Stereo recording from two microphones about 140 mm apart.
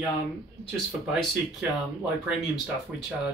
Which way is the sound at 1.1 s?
Centre (ahead or behind).